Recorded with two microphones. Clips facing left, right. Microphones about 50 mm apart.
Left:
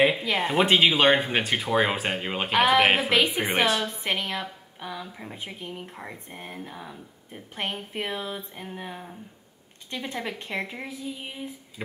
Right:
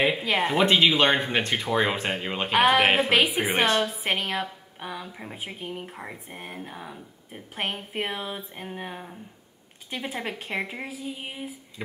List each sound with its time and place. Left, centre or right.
0.1 s a woman's voice: centre
0.5 s a woman's voice: centre
11.1 s female singing: centre